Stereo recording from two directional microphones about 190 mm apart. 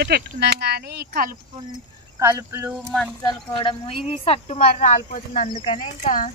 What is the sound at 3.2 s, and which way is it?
Speech, 25° left (ahead or behind).